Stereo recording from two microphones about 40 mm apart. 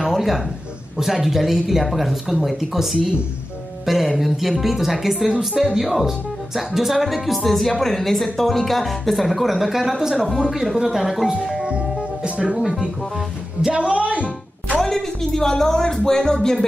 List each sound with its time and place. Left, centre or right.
0.0 s a sound: centre
0.9 s speech: centre
3.8 s music: centre
4.2 s speech: centre
11.6 s music: right
13.7 s music: right
14.8 s speech: centre